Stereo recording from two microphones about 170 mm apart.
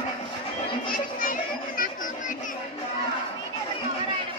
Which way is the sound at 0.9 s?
55° left (ahead or behind).